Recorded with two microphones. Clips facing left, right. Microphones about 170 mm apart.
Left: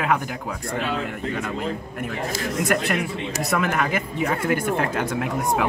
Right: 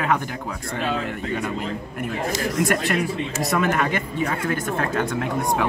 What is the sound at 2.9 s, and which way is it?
Speech, centre (ahead or behind).